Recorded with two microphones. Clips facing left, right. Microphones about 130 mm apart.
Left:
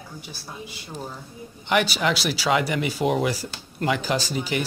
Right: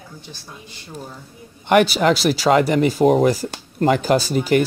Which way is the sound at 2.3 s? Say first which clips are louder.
Right 7 dB; 45° right (ahead or behind).